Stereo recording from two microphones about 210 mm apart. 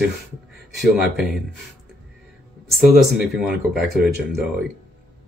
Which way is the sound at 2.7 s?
Centre (ahead or behind).